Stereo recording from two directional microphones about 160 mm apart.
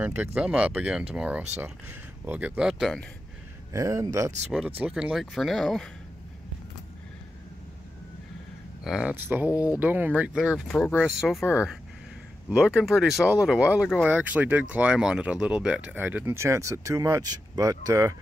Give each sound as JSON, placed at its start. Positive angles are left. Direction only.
{"t": 0.0, "sound": "speech", "side_deg": -10}
{"t": 3.7, "sound": "speech", "side_deg": -20}
{"t": 4.5, "sound": "speech", "side_deg": -10}
{"t": 8.8, "sound": "speech", "side_deg": -5}
{"t": 12.4, "sound": "speech", "side_deg": -5}